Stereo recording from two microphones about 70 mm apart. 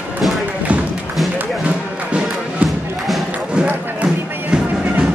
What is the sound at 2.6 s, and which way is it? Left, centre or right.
Thump, centre.